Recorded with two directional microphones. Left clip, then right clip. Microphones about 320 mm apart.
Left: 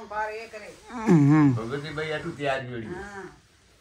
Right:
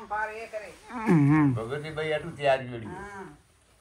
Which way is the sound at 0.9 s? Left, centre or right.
Centre.